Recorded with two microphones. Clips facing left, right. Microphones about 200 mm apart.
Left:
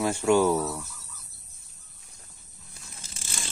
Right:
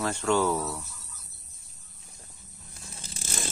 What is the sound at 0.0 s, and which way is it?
Speech, 10° left (ahead or behind).